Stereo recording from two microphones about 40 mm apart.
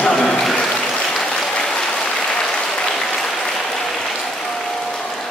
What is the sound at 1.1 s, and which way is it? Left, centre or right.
Applause, centre.